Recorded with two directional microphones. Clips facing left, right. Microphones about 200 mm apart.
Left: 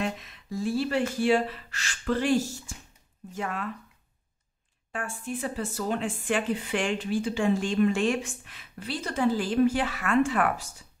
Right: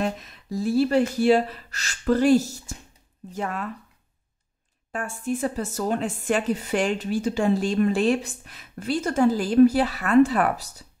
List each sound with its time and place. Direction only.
0.0 s a woman's voice: 40° right (ahead or behind)
4.9 s a woman's voice: 40° right (ahead or behind)